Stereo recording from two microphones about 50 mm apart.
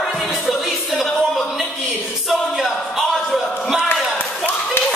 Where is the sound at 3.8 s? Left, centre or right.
Left.